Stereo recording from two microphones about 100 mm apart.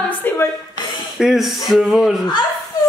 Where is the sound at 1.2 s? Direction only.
Centre (ahead or behind).